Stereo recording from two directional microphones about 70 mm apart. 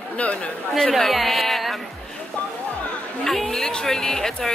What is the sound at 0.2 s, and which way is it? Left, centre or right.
Speech, centre.